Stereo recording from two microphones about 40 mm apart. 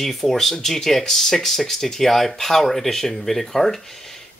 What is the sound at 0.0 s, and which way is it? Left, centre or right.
Speech, centre.